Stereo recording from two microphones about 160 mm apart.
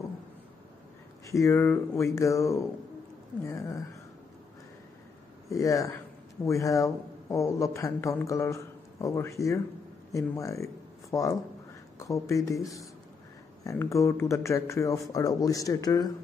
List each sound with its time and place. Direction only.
1.3 s speech: 15° left (ahead or behind)
5.5 s speech: 20° left (ahead or behind)
13.7 s speech: 20° left (ahead or behind)